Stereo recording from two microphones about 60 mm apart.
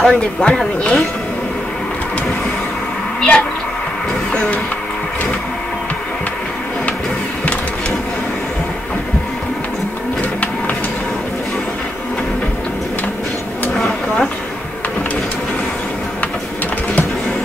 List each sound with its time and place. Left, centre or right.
0.0 s speech: centre
3.2 s speech: centre
13.7 s a sound: centre